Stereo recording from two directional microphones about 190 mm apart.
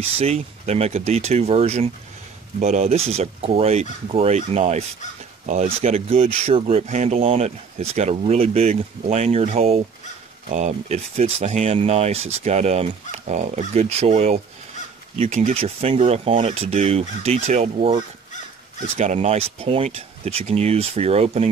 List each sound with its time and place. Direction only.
0.0 s speech: 30° right (ahead or behind)
18.9 s speech: 35° right (ahead or behind)